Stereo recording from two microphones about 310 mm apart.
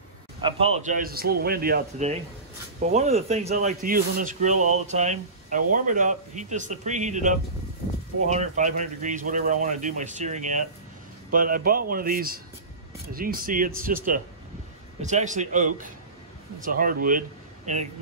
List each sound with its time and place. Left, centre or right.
0.4 s speech: centre